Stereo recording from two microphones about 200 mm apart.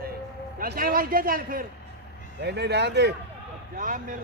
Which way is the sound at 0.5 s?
45° right (ahead or behind).